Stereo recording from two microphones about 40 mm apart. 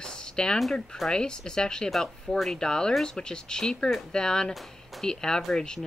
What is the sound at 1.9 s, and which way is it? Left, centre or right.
Speech, centre.